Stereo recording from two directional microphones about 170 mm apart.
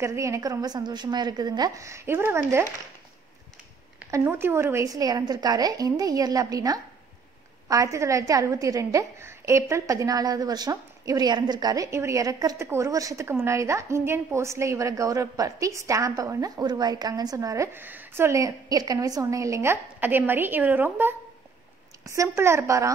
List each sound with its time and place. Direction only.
0.0 s a woman's voice: 15° right (ahead or behind)
4.0 s a woman's voice: 15° right (ahead or behind)